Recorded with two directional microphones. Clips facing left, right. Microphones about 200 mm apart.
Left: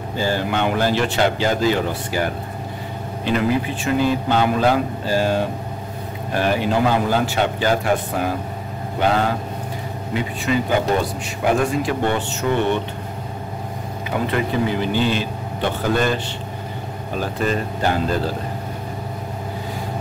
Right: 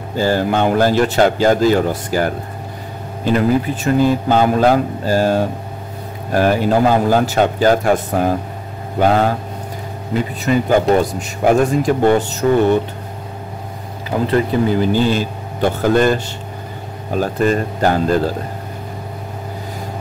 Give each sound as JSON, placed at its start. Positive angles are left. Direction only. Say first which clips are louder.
{"t": 0.2, "sound": "a man's voice", "louder": "right 5 dB", "side_deg": -45}
{"t": 10.1, "sound": "speech", "louder": "right 4 dB", "side_deg": -40}
{"t": 14.2, "sound": "a man's voice", "louder": "right 6 dB", "side_deg": -40}
{"t": 17.2, "sound": "a man's voice", "louder": "right 6 dB", "side_deg": -45}